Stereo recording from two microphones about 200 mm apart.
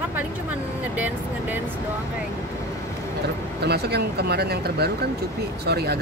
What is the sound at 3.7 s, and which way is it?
Speech, 55° right (ahead or behind).